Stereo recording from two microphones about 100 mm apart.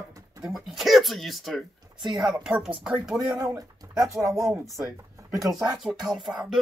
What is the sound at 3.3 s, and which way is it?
Speech, 30° right (ahead or behind).